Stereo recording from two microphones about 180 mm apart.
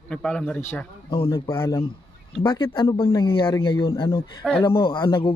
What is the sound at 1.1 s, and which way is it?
Speech, 20° left (ahead or behind).